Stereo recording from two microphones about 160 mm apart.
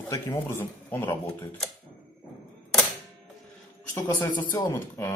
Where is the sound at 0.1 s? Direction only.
20° left (ahead or behind).